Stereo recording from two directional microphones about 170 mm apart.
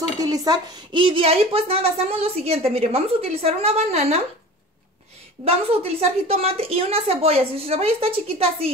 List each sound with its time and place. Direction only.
0.2 s a woman's voice: 20° right (ahead or behind); by 4.2 s 40° right (ahead or behind)
5.4 s a woman's voice: 35° right (ahead or behind)